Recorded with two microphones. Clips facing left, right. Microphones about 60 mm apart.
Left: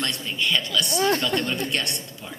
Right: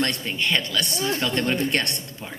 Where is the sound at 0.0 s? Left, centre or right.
Right.